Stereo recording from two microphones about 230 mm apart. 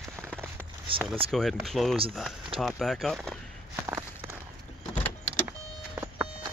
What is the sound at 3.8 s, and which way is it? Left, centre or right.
Walk, centre.